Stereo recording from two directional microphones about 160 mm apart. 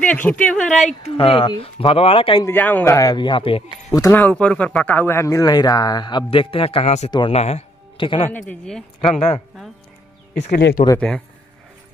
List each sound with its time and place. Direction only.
0.0 s speech: 10° left (ahead or behind)
0.8 s speech: 40° left (ahead or behind)
2.4 s speech: 10° left (ahead or behind); by 3.6 s 35° left (ahead or behind)
3.9 s speech: 15° left (ahead or behind); by 7.1 s 45° left (ahead or behind)
7.1 s speech: 30° left (ahead or behind)
8.3 s speech: 5° left (ahead or behind)
10.3 s speech: 45° left (ahead or behind)
11.0 s speech: 5° left (ahead or behind)